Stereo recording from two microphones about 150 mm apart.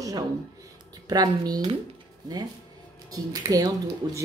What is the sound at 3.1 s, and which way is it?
Speech, 25° right (ahead or behind).